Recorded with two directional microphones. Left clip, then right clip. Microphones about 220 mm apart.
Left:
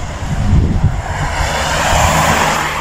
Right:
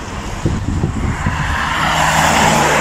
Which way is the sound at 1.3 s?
20° left (ahead or behind).